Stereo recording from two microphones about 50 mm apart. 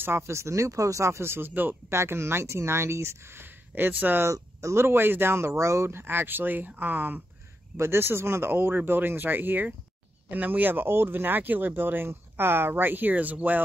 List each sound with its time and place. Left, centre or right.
0.3 s speech: right
1.5 s speech: right
1.9 s speech: right
4.2 s speech: right
4.8 s speech: right
5.6 s speech: right
7.7 s speech: right